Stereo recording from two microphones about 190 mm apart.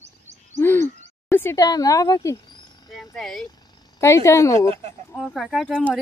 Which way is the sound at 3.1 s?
Centre (ahead or behind).